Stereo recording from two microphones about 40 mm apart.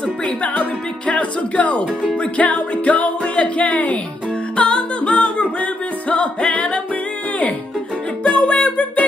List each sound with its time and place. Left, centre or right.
0.0 s speech: left
2.1 s music: left
8.2 s music: left